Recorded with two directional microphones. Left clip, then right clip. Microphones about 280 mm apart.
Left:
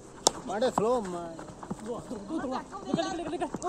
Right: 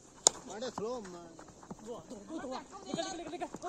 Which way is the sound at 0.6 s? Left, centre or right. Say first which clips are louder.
Left 12 dB; left.